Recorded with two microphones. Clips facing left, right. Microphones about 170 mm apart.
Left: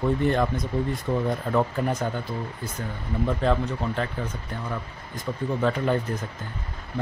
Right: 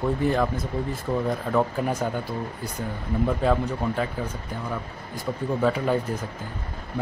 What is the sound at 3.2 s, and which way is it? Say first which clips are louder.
Speech: right 1 dB; 5° right (ahead or behind).